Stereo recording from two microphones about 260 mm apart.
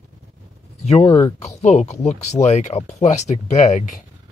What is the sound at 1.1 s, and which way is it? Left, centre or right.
Speech, centre.